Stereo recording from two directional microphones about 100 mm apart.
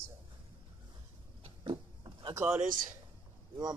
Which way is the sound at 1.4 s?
55° right (ahead or behind).